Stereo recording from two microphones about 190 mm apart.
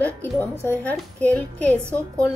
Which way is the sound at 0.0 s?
10° left (ahead or behind).